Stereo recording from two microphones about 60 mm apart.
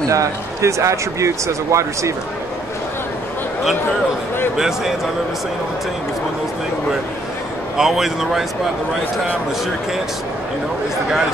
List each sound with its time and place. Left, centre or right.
0.1 s speech: right
4.6 s speech: centre
7.7 s a man's voice: centre